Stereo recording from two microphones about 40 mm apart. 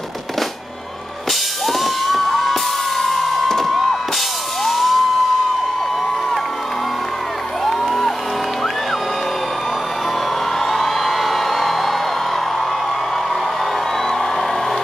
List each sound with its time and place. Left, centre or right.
1.7 s music: centre
7.6 s music: centre
10.6 s music: centre